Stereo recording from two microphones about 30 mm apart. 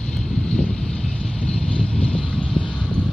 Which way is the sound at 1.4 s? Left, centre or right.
Left.